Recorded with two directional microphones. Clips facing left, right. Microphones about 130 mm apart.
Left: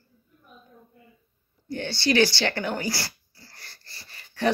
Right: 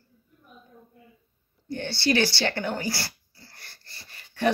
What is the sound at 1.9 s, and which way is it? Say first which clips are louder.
Speech: left 2 dB; 20° left (ahead or behind).